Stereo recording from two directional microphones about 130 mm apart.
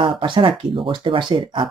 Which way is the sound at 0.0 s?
40° right (ahead or behind).